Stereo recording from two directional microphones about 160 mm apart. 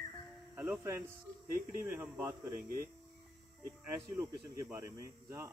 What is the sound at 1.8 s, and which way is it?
Speech, 15° right (ahead or behind).